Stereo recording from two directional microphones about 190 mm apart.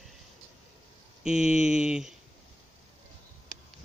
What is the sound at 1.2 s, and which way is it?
Speech, 5° right (ahead or behind).